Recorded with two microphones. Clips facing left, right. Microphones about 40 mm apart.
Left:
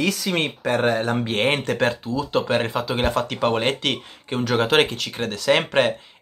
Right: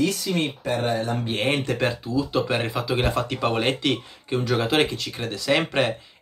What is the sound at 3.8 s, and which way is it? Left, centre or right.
Speech, left.